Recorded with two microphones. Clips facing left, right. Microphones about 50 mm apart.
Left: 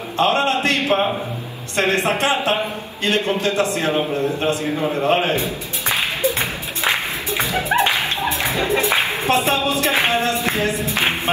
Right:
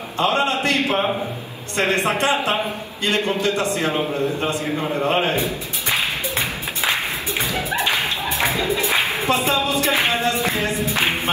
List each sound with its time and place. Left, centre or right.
0.2 s a sound: left
2.0 s a man's voice: left
5.9 s music: left